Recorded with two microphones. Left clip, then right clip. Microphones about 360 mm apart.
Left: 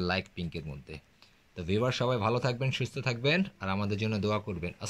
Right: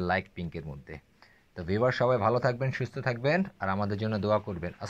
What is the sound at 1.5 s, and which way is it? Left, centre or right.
Speech, centre.